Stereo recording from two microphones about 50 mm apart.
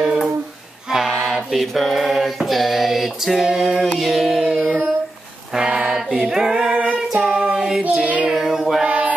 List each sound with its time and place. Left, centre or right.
0.9 s mantra: centre
4.0 s a sound: centre
4.4 s carnatic music: centre
5.5 s a sound: centre
6.1 s a capella: centre
7.5 s female singing: centre
8.0 s child singing: right
8.3 s child singing: centre
8.8 s a sound: right